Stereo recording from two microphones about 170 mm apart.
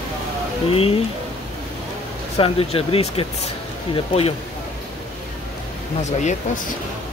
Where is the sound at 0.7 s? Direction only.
35° left (ahead or behind).